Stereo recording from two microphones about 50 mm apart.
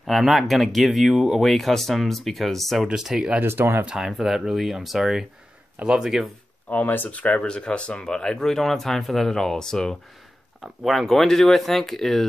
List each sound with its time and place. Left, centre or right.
0.0 s speech: centre
2.9 s speech: centre
3.3 s speech: right
3.9 s speech: centre
6.7 s speech: left
7.1 s speech: left; by 9.9 s centre
10.6 s speech: centre
11.1 s speech: centre